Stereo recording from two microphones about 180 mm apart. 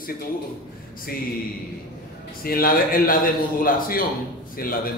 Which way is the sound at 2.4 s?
55° left (ahead or behind).